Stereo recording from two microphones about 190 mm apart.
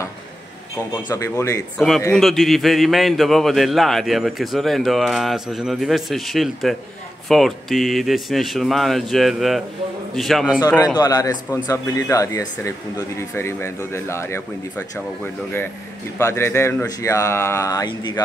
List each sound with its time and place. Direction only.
1.1 s speech: 15° left (ahead or behind)
1.8 s speech: centre (ahead or behind)
10.6 s a man's voice: 20° left (ahead or behind)
16.2 s speech: 15° left (ahead or behind)